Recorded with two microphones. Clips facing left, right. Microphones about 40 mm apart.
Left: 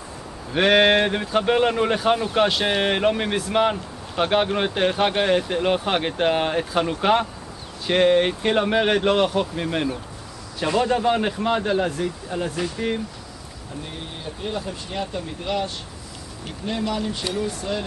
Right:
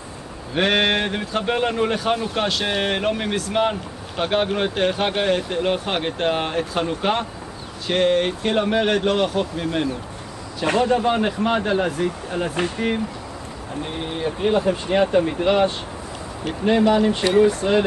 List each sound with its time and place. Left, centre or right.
0.5 s speech: centre
10.8 s speech: centre
11.4 s speech: centre
12.3 s speech: right
12.7 s speech: centre
14.2 s speech: right